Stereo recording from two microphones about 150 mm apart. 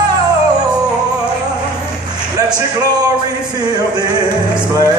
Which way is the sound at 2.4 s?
25° right (ahead or behind).